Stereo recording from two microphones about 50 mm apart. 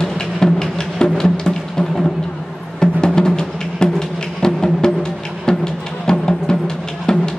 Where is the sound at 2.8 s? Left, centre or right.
Centre.